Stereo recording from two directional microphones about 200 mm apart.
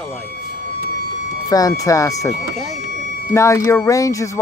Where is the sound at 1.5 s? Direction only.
15° left (ahead or behind).